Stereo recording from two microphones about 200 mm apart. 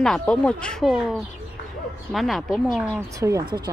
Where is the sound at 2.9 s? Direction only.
15° right (ahead or behind).